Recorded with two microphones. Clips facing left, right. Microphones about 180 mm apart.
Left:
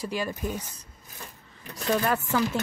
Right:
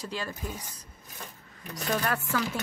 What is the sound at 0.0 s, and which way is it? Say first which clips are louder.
Speech: left 5 dB; 15° left (ahead or behind).